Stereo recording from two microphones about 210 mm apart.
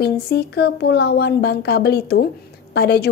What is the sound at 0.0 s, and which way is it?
A woman's voice, 50° left (ahead or behind).